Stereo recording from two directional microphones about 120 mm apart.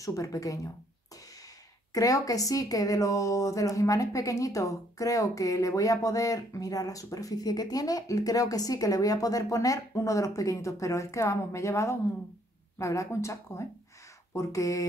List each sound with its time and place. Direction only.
0.0 s a woman's voice: 30° left (ahead or behind)
2.0 s a woman's voice: 30° left (ahead or behind)